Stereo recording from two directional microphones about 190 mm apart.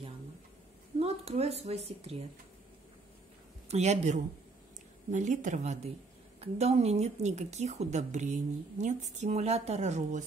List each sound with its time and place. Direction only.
0.9 s a woman's voice: 35° right (ahead or behind)
3.6 s a woman's voice: 35° right (ahead or behind)